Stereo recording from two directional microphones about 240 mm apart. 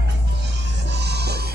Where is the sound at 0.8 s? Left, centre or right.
Right.